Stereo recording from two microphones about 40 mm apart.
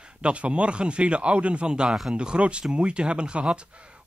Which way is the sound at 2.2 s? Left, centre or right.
Right.